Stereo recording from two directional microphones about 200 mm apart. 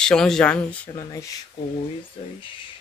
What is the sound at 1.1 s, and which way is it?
Speech, 15° left (ahead or behind).